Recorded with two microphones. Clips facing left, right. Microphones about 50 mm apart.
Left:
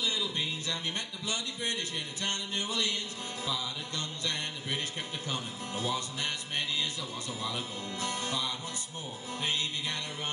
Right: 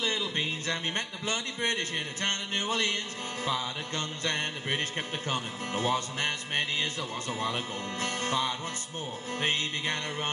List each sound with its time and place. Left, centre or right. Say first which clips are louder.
0.0 s music: right 3 dB; right